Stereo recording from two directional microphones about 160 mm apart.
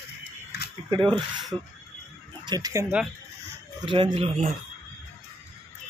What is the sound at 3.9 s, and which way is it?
Speech, 35° right (ahead or behind).